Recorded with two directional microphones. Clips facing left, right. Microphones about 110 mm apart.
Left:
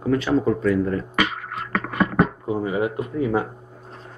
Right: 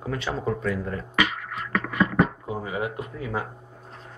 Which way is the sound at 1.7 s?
45° left (ahead or behind).